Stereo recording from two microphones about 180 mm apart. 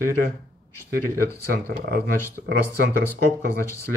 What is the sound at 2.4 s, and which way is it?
Speech, 75° right (ahead or behind).